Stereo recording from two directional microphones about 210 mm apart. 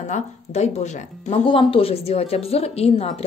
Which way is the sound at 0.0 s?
35° left (ahead or behind).